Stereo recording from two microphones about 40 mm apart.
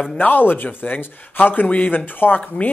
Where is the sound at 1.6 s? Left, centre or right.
Left.